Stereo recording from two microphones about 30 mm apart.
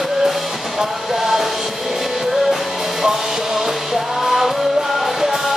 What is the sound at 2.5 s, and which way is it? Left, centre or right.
Music, centre.